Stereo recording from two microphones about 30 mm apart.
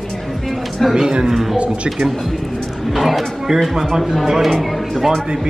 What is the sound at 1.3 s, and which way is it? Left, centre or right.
Speech, centre.